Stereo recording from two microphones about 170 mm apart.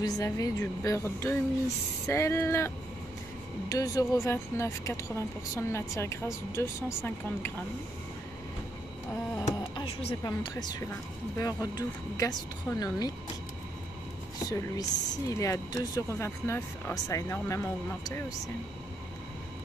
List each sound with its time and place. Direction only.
0.0 s a woman's voice: 20° left (ahead or behind)
9.8 s speech: 25° left (ahead or behind)
14.5 s speech: 20° left (ahead or behind)